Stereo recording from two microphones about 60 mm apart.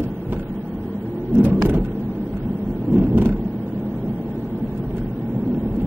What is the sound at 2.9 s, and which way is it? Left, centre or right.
Vehicle, right.